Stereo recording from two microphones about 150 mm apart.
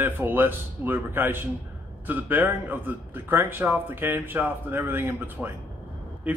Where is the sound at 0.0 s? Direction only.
15° right (ahead or behind).